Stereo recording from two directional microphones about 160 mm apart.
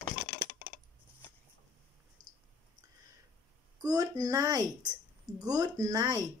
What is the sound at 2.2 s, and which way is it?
Clicking, 50° right (ahead or behind).